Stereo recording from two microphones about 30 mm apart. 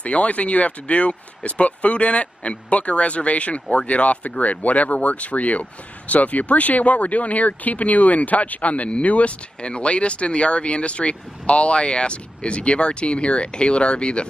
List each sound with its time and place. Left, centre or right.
0.0 s speech: left
9.6 s speech: left